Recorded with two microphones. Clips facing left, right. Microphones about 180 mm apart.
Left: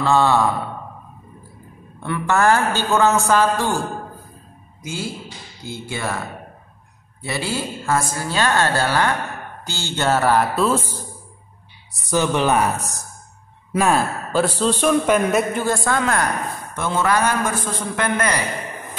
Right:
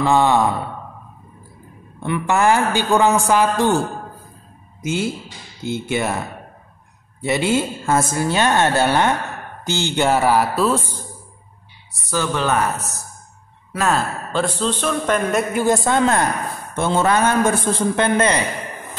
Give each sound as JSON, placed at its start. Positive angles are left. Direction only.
{"t": 0.0, "sound": "a man's voice", "side_deg": -15}
{"t": 2.0, "sound": "a man's voice", "side_deg": -15}
{"t": 4.8, "sound": "a woman's voice", "side_deg": -20}
{"t": 12.1, "sound": "a man's voice", "side_deg": 15}
{"t": 15.5, "sound": "a woman's voice", "side_deg": -15}